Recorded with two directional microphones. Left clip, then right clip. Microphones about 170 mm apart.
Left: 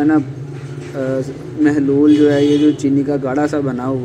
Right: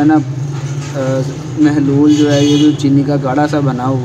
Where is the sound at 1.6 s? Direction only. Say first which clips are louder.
Right 2 dB; 15° left (ahead or behind).